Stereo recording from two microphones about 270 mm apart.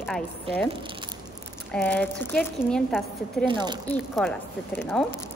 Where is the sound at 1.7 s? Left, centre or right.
Centre.